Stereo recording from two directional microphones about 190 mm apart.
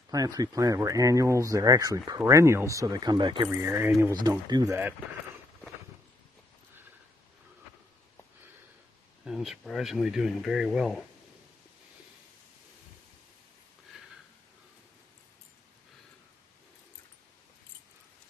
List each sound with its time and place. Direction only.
0.1 s speech: 20° right (ahead or behind)
3.4 s speech: 10° right (ahead or behind)
9.2 s speech: centre (ahead or behind)
13.9 s a sound: 5° right (ahead or behind)